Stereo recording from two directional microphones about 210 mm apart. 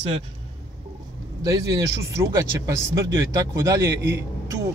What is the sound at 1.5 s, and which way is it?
Speech, 15° right (ahead or behind).